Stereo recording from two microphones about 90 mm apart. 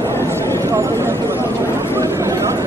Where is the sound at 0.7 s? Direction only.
35° right (ahead or behind).